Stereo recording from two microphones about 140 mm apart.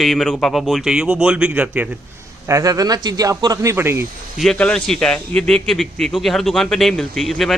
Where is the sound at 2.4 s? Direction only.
25° right (ahead or behind).